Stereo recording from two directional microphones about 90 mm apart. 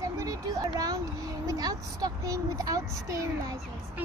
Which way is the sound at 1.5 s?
45° right (ahead or behind).